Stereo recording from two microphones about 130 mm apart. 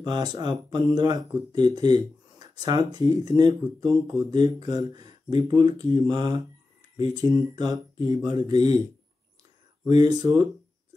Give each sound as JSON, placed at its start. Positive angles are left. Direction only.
{"t": 0.0, "sound": "speech", "side_deg": -35}
{"t": 9.8, "sound": "speech", "side_deg": -30}